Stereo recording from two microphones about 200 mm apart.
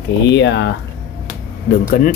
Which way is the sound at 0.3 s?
60° left (ahead or behind).